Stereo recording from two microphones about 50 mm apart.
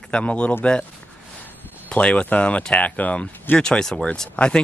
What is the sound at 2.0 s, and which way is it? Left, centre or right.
Speech, left.